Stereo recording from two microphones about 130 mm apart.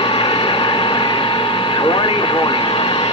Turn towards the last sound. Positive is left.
turn(degrees=40)  # may be behind; listen again after turning